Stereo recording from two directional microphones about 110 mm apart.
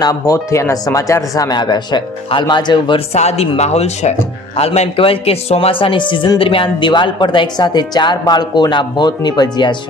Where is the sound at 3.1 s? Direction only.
75° left (ahead or behind).